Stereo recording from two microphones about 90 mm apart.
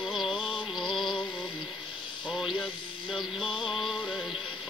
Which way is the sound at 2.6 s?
60° left (ahead or behind).